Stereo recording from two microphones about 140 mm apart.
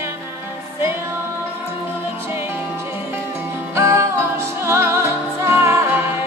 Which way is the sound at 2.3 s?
15° right (ahead or behind).